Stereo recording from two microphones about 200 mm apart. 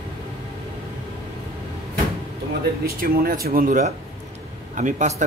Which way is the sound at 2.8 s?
45° right (ahead or behind).